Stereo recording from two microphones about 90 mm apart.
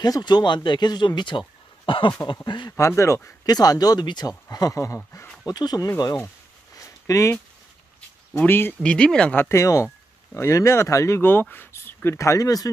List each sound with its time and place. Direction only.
0.0 s speech: 50° left (ahead or behind)
1.9 s a sound: 70° left (ahead or behind)
2.4 s speech: 55° left (ahead or behind)
3.4 s speech: 45° left (ahead or behind)
5.5 s speech: 45° left (ahead or behind)
6.1 s a sound: 35° left (ahead or behind)
8.4 s speech: 25° left (ahead or behind)
8.8 s speech: 10° left (ahead or behind)
9.4 s speech: 35° left (ahead or behind)